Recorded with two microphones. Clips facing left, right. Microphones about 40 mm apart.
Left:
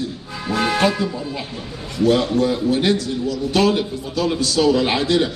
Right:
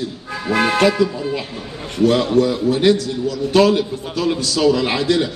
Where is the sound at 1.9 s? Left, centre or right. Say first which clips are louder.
Right 2 dB; right.